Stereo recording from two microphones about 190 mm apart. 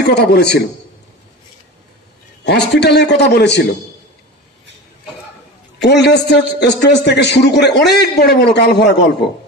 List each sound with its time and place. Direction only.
0.0 s a man's voice: 60° left (ahead or behind)
2.4 s a man's voice: 60° left (ahead or behind)
5.8 s a man's voice: 65° left (ahead or behind)